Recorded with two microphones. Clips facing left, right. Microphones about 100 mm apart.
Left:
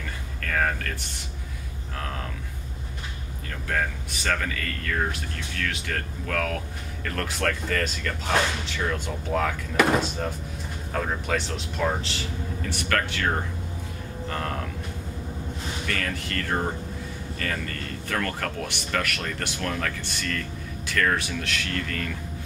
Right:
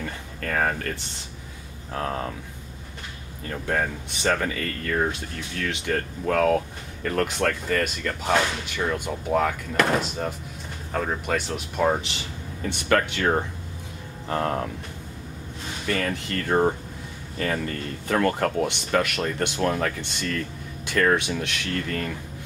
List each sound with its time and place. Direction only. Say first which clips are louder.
3.6 s speech: right 2 dB; 20° right (ahead or behind)
15.9 s speech: right 5 dB; 20° right (ahead or behind)